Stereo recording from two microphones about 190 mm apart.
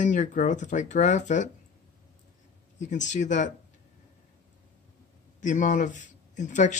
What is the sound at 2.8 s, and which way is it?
Speech, 40° left (ahead or behind).